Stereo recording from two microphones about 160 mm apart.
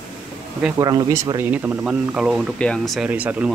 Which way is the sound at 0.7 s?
20° right (ahead or behind).